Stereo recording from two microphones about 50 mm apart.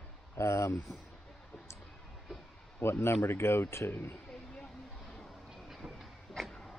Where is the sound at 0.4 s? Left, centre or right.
Left.